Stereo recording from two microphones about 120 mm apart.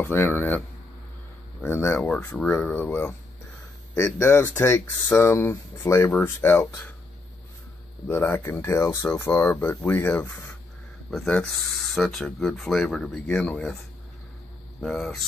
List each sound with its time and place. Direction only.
0.0 s speech: 20° left (ahead or behind)
8.1 s speech: 20° left (ahead or behind)
11.1 s speech: 5° left (ahead or behind)
14.8 s speech: 5° left (ahead or behind)